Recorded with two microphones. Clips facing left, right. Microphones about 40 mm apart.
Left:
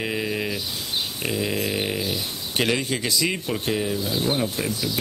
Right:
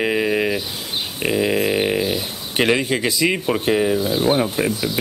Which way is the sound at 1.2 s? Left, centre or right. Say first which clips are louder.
Right 9 dB; right.